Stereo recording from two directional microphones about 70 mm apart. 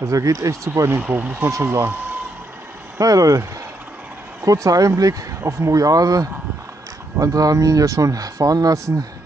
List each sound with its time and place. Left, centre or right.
0.0 s speech: right
0.8 s speech: right
1.5 s speech: right
3.0 s speech: right
4.5 s speech: right